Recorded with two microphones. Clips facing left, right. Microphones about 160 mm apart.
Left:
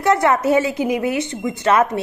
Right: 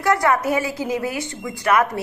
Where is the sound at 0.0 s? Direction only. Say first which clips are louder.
Left 3 dB; 25° left (ahead or behind).